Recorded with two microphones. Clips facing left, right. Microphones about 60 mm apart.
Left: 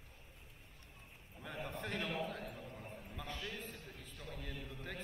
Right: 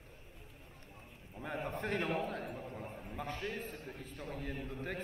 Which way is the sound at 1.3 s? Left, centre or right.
Right.